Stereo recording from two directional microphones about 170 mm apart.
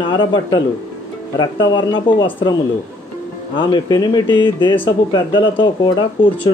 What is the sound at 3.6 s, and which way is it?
Speech, 25° left (ahead or behind).